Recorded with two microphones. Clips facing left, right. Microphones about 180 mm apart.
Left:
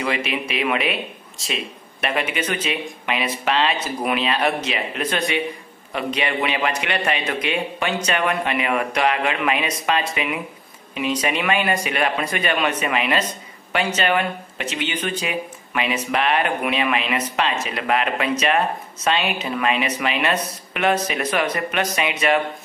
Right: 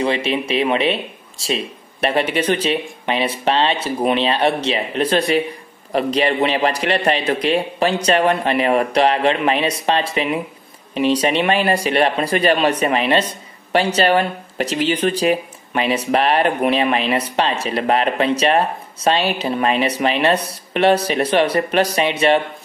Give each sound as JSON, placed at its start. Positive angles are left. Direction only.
{"t": 0.0, "sound": "speech", "side_deg": -30}